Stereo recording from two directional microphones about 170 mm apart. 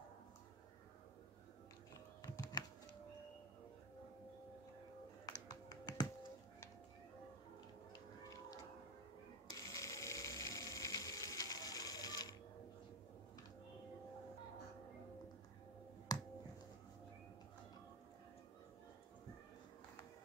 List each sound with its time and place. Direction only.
2.2 s computer keyboard: 20° left (ahead or behind)
5.2 s music: 20° left (ahead or behind)
9.5 s ratchet: 20° left (ahead or behind)
16.1 s finger snapping: 20° left (ahead or behind)